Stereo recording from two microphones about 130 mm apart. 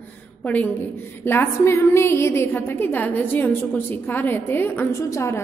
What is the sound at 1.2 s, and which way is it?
A woman's voice, 15° left (ahead or behind).